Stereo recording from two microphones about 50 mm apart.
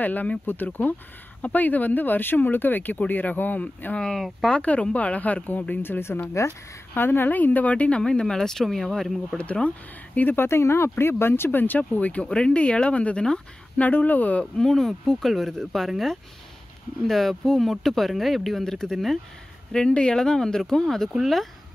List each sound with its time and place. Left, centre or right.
0.0 s speech: left
8.0 s speech: centre
9.4 s speech: left
10.1 s speech: left
10.6 s speech: left
12.3 s speech: centre
13.7 s speech: left
14.6 s speech: centre
19.7 s speech: left; by 21.5 s centre